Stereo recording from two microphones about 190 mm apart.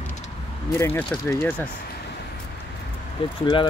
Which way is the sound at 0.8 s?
10° left (ahead or behind).